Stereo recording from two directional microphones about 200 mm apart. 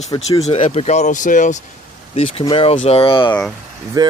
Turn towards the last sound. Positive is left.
turn(degrees=-20)  # may be behind; listen again after turning